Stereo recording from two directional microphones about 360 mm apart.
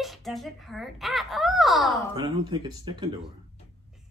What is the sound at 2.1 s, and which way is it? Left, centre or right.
Speech, centre.